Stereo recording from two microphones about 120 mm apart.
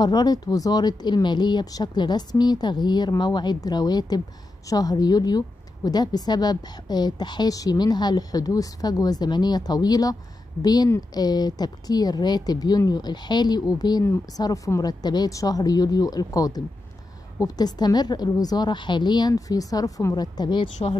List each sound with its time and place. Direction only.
0.0 s a woman's voice: 35° left (ahead or behind)